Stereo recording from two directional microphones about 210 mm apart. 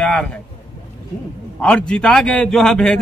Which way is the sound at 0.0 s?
5° left (ahead or behind).